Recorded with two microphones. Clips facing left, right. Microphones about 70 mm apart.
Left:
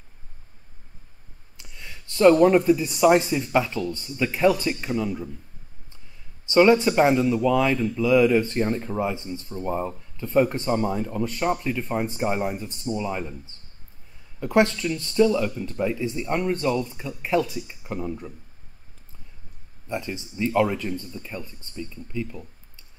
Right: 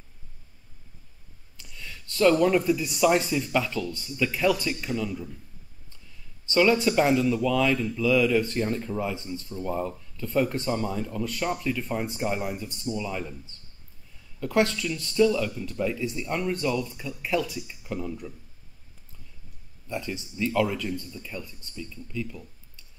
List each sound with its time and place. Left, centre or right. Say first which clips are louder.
1.6 s speech: even; left
6.5 s speech: left 4 dB; left
14.4 s speech: left 4 dB; left
19.9 s speech: left 2 dB; left